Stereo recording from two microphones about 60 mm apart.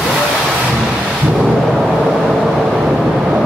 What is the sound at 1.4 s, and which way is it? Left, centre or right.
Vehicle, centre.